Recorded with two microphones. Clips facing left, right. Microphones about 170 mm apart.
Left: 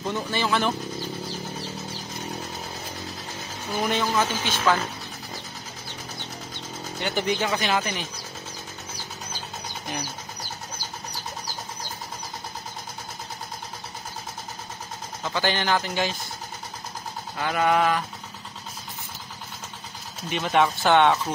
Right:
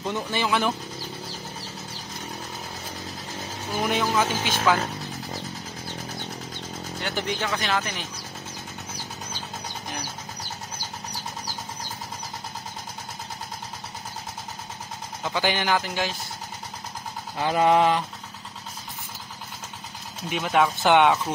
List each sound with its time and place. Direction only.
0.0 s speech: 15° right (ahead or behind)
3.9 s speech: 10° right (ahead or behind)
7.0 s speech: centre (ahead or behind)
15.2 s speech: 10° right (ahead or behind)
17.4 s a sound: 25° right (ahead or behind)
20.2 s speech: 5° right (ahead or behind)